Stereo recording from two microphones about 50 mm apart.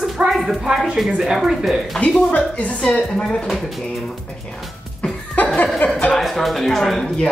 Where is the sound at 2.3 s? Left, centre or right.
Left.